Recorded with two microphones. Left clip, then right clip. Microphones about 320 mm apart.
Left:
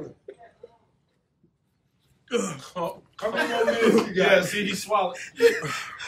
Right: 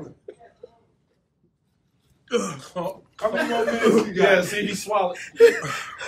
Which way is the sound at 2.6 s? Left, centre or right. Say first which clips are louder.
Right 1 dB; centre.